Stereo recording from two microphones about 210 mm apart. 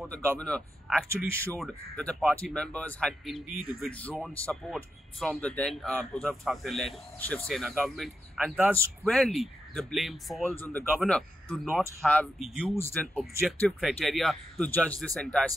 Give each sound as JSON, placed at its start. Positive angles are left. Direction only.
{"t": 0.0, "sound": "speech", "side_deg": 5}
{"t": 1.0, "sound": "speech", "side_deg": -10}
{"t": 1.5, "sound": "speech", "side_deg": 5}
{"t": 9.0, "sound": "speech", "side_deg": 0}